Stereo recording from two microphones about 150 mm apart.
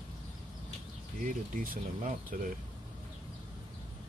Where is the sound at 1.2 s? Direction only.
65° right (ahead or behind).